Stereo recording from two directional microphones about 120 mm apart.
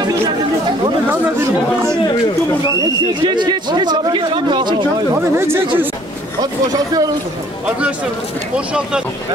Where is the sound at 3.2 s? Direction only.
40° right (ahead or behind).